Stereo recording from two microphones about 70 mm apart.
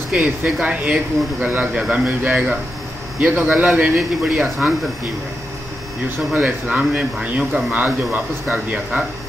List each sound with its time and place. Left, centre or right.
0.1 s speech: right
4.2 s speech: centre
6.0 s speech: right
7.7 s speech: right